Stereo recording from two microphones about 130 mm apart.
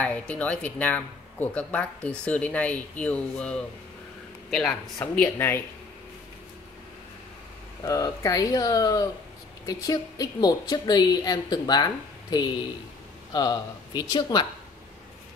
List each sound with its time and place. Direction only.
0.0 s speech: 10° left (ahead or behind)
7.8 s a woman's voice: 25° left (ahead or behind)